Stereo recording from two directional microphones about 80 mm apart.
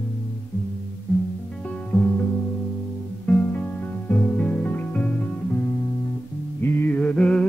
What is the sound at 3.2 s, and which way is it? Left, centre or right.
Music, left.